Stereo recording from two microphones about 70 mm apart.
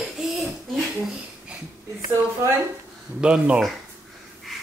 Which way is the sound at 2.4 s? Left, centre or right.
Right.